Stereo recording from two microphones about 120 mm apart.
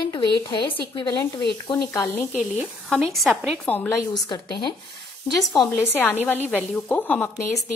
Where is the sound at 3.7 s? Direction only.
15° left (ahead or behind).